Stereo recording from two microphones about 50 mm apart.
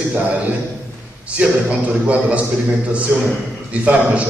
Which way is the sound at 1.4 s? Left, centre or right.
Right.